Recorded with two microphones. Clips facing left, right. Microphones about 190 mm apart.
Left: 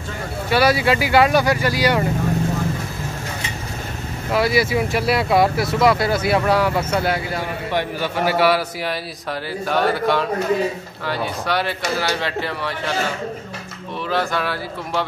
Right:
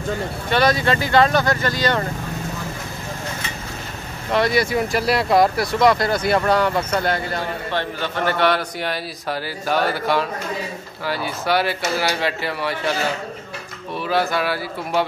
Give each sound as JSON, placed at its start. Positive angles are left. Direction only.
{"t": 0.5, "sound": "speech", "side_deg": 10}
{"t": 4.3, "sound": "speech", "side_deg": 5}
{"t": 14.0, "sound": "speech", "side_deg": -10}